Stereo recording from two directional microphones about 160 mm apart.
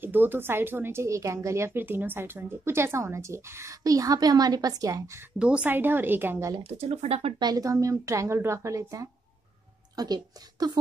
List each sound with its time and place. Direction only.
0.0 s a woman's voice: 10° right (ahead or behind)
5.4 s a woman's voice: 5° right (ahead or behind)
6.5 s speech: 40° right (ahead or behind)